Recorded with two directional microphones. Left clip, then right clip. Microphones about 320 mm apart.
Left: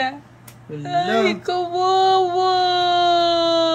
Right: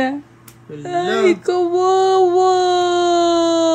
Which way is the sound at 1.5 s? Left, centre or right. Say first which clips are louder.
Right 3 dB; right.